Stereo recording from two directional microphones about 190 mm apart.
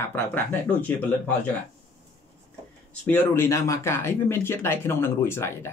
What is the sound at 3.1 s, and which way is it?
Speech, 15° left (ahead or behind).